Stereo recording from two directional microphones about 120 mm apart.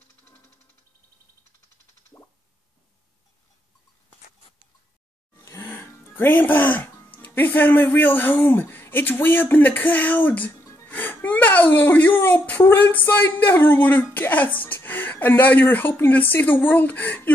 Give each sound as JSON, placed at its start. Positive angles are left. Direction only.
{"t": 5.4, "sound": "music", "side_deg": 20}
{"t": 7.2, "sound": "speech", "side_deg": 15}